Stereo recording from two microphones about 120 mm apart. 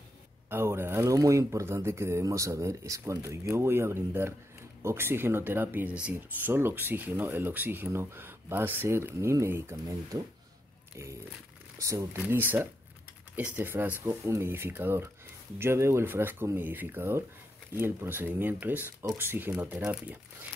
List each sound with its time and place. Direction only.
0.5 s speech: 20° right (ahead or behind)
11.9 s speech: 25° right (ahead or behind)